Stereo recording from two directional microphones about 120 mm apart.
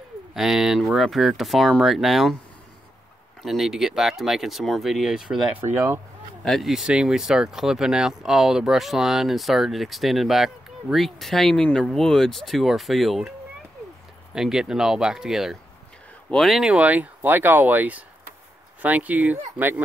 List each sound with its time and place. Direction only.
0.3 s speech: 5° right (ahead or behind)
3.4 s speech: centre (ahead or behind)
5.5 s speech: 20° right (ahead or behind)
6.4 s speech: centre (ahead or behind)
14.3 s speech: 5° right (ahead or behind)